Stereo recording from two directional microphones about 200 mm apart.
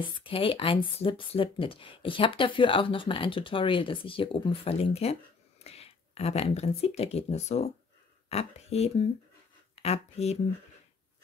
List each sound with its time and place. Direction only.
0.2 s speech: 25° left (ahead or behind)